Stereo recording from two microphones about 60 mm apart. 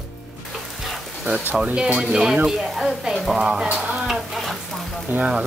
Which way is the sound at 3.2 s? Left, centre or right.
Centre.